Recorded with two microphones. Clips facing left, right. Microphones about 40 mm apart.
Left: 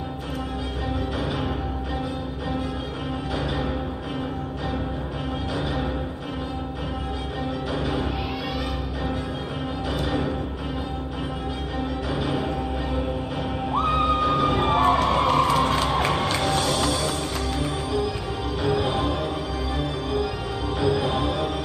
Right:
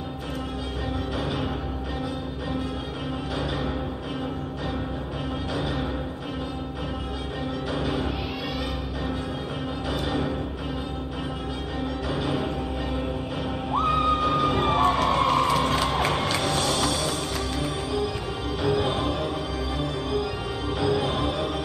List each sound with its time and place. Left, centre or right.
7.7 s music: centre
10.0 s music: centre
12.1 s music: centre
13.7 s music: centre
18.6 s music: centre
20.8 s music: centre